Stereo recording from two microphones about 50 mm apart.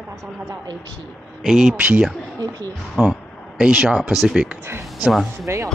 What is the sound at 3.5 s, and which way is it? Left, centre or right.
Speech, centre.